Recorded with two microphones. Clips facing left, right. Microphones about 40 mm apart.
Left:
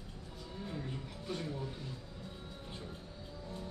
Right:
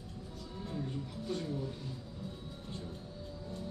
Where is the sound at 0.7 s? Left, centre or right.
Centre.